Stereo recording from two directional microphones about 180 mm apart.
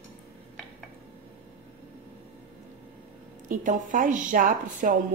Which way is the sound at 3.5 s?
45° right (ahead or behind).